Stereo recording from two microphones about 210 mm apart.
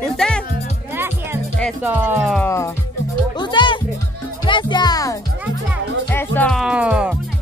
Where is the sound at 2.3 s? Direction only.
10° left (ahead or behind).